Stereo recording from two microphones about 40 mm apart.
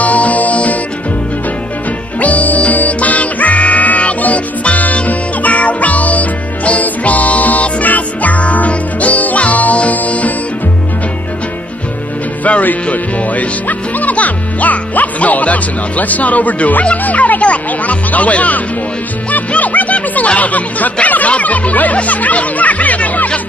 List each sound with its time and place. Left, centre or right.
0.0 s music: left
2.1 s music: left
12.4 s music: left
16.8 s speech: left
19.3 s music: left
20.2 s speech: left